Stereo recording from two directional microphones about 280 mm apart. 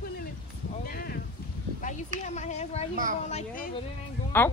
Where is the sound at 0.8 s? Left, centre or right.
Left.